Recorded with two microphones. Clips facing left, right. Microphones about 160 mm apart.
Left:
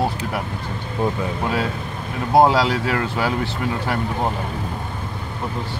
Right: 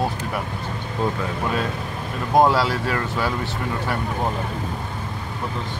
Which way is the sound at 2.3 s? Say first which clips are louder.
Left 2 dB; 15° left (ahead or behind).